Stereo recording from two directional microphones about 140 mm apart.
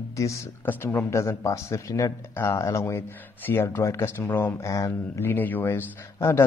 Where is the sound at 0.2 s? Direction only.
20° left (ahead or behind).